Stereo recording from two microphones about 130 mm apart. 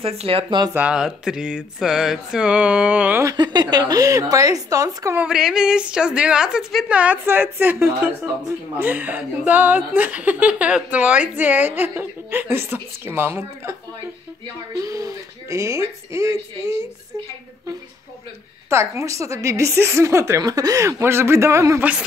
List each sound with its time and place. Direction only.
0.0 s speech: 45° right (ahead or behind)
0.7 s a woman's voice: 5° right (ahead or behind)
3.3 s a woman's voice: 35° right (ahead or behind)
5.1 s a woman's voice: 5° right (ahead or behind)
14.8 s a woman's voice: 25° right (ahead or behind)
18.7 s a woman's voice: 20° right (ahead or behind)